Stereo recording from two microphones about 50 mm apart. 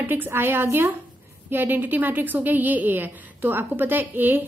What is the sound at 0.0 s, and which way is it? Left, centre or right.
A woman's voice, right.